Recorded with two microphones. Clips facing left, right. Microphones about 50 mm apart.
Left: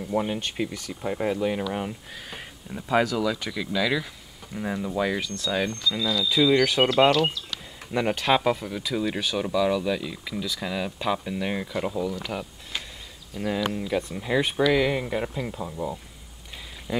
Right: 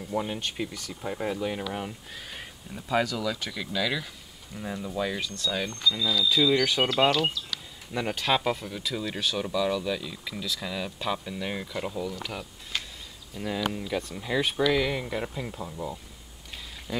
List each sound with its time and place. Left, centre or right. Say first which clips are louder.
0.3 s speech: left 4 dB; centre
4.6 s speech: left 4 dB; centre
5.2 s speech: left 3 dB; centre
5.6 s speech: left 1 dB; centre
7.9 s speech: left 4 dB; centre